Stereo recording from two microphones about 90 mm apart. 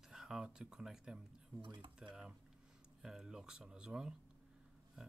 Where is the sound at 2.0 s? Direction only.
5° right (ahead or behind).